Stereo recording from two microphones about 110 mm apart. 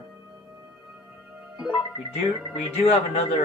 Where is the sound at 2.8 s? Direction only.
60° left (ahead or behind).